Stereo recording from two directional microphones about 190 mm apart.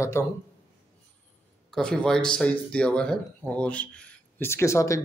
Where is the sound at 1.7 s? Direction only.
5° left (ahead or behind).